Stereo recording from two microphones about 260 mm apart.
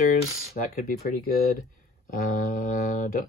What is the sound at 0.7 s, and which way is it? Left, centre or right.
Speech, left.